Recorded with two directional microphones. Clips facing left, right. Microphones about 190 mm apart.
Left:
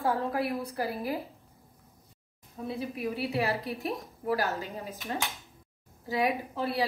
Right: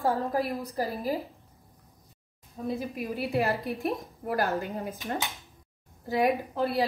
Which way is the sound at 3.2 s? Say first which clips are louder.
Right 4 dB; 55° right (ahead or behind).